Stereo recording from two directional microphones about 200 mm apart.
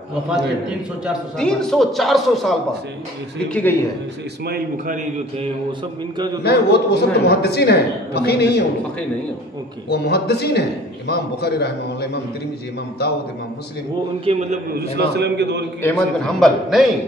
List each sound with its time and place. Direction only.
0.3 s a man's voice: 5° right (ahead or behind)
4.5 s a man's voice: 40° right (ahead or behind)
5.7 s speech: 20° right (ahead or behind)
6.4 s speech: 55° left (ahead or behind)
9.8 s speech: 55° left (ahead or behind)
14.2 s a man's voice: 35° right (ahead or behind)
14.8 s a man's voice: 55° right (ahead or behind)
15.8 s a man's voice: 5° left (ahead or behind)